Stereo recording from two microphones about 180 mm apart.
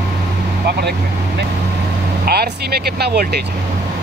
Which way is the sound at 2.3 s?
60° right (ahead or behind).